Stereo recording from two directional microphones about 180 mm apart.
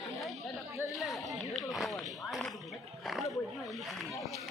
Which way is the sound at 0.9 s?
Centre (ahead or behind).